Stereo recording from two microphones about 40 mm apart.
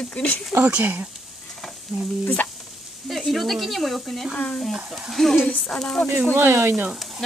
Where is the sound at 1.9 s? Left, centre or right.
Centre.